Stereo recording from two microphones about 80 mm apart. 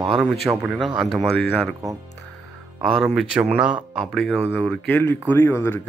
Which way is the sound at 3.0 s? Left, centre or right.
Centre.